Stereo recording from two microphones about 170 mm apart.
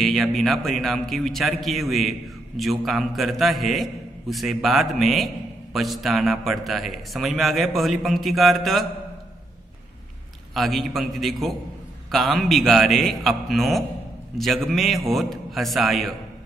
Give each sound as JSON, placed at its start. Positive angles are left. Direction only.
{"t": 0.0, "sound": "a man's voice", "side_deg": 0}
{"t": 10.5, "sound": "a man's voice", "side_deg": 0}